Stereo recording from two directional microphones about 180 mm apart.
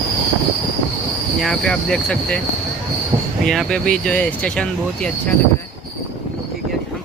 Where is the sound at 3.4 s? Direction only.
5° left (ahead or behind).